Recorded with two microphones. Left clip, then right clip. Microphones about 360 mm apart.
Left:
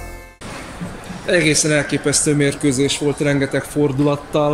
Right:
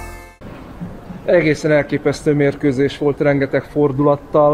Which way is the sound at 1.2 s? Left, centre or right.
Centre.